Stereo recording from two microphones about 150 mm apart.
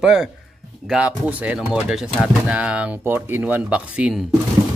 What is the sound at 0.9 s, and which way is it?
Speech, 5° right (ahead or behind).